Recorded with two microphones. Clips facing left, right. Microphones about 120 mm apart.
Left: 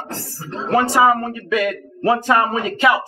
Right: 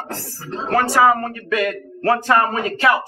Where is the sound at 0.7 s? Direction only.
20° left (ahead or behind).